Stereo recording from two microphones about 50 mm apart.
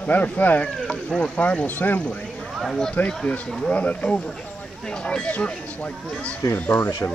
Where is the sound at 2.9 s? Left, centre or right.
Centre.